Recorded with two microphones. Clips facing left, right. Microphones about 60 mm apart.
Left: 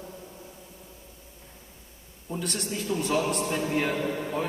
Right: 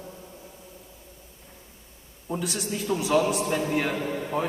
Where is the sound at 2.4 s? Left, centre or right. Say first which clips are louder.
Even; centre.